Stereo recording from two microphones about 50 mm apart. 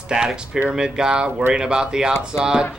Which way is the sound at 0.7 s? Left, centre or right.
Centre.